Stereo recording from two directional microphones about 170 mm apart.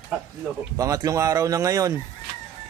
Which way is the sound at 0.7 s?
20° right (ahead or behind).